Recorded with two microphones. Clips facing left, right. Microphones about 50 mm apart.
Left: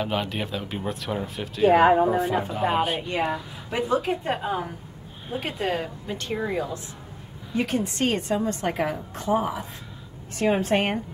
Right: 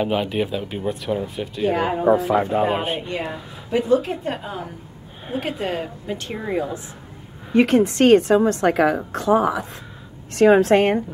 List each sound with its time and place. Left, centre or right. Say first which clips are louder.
0.0 s speech: right 6 dB; centre
1.7 s speech: left 6 dB; left
2.0 s speech: right 6 dB; right
3.1 s a woman's voice: left 2 dB; centre
5.4 s speech: right 1 dB; centre
7.5 s a woman's voice: right 10 dB; right
10.3 s a woman's voice: right 9 dB; right